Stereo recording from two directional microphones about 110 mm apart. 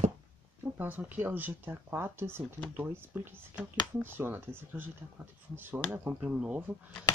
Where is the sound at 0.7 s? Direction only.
15° right (ahead or behind).